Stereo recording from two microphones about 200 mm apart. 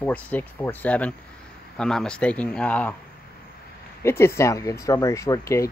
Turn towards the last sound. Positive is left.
turn(degrees=15)  # may be behind; listen again after turning